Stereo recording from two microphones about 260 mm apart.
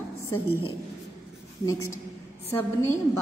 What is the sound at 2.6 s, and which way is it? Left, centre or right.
Speech, centre.